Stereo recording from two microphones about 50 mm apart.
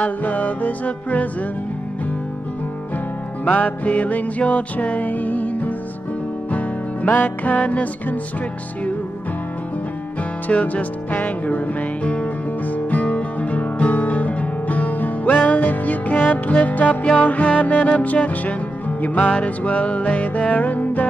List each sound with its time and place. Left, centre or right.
0.0 s music: left
3.4 s music: left
10.5 s music: left